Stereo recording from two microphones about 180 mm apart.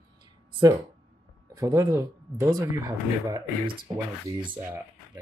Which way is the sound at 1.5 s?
20° right (ahead or behind).